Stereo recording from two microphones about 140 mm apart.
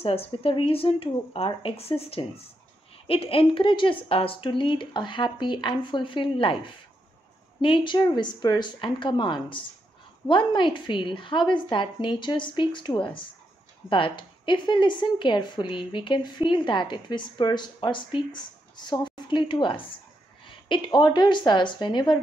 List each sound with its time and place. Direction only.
0.0 s speech: 45° left (ahead or behind)